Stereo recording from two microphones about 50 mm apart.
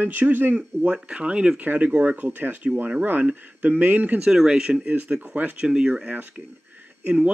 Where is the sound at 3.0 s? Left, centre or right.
Right.